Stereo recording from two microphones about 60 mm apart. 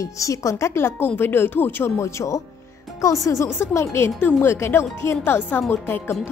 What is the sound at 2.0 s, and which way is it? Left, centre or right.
A woman's voice, left.